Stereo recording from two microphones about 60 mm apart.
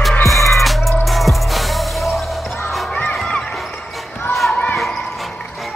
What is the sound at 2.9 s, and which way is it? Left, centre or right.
Music, left.